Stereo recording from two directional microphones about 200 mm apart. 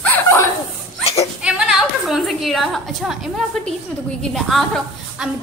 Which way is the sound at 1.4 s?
5° right (ahead or behind).